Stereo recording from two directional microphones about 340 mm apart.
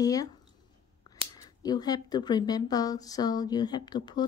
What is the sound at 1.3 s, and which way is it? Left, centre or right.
Speech, centre.